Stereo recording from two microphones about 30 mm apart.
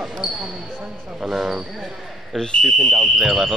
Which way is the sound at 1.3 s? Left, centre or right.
Centre.